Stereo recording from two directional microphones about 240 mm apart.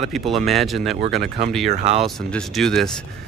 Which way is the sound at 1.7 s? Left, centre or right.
Right.